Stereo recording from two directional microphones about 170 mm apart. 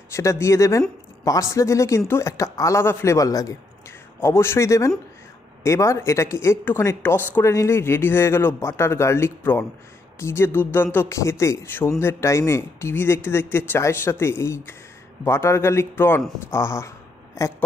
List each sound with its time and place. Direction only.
0.1 s speech: 15° left (ahead or behind)